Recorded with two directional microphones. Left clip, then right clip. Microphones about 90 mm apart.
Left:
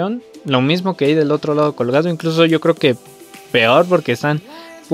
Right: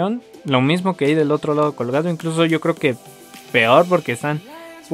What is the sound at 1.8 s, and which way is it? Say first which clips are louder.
Speech: left 4 dB; 25° left (ahead or behind).